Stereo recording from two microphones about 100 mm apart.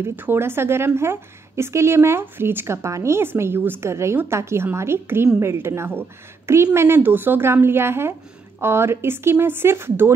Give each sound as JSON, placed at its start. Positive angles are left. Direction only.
{"t": 0.0, "sound": "a woman's voice", "side_deg": -20}